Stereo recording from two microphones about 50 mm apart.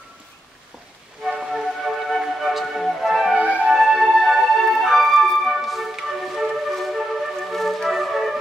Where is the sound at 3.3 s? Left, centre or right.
Right.